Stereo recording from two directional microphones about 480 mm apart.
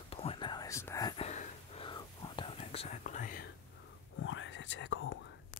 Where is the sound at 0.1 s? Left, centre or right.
Centre.